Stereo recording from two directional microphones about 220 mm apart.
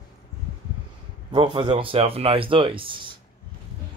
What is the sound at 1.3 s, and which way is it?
Speech, 20° right (ahead or behind).